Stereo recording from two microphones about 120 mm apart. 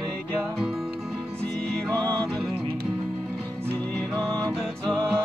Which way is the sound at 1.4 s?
10° left (ahead or behind).